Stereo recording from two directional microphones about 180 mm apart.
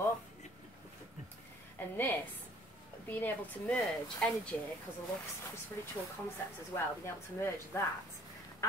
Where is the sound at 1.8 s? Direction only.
10° left (ahead or behind).